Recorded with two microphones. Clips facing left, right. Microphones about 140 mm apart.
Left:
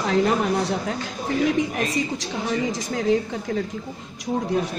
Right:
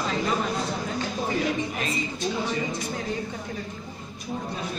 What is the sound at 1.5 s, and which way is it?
Speech, 90° left.